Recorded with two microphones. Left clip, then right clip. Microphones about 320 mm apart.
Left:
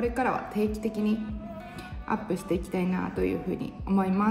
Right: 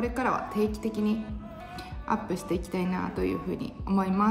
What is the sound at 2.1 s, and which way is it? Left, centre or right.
A woman's voice, centre.